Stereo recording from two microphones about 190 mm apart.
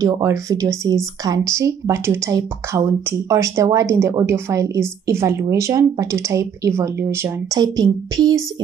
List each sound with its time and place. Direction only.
0.0 s speech: 15° right (ahead or behind)